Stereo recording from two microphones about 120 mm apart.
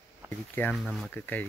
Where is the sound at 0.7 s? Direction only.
Centre (ahead or behind).